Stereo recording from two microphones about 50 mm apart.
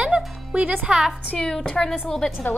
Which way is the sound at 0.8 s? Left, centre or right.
Centre.